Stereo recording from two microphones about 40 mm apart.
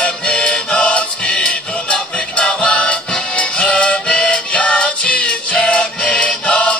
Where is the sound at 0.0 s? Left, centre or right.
Left.